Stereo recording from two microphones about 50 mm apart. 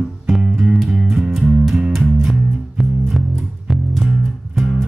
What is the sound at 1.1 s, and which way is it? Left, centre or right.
Music, centre.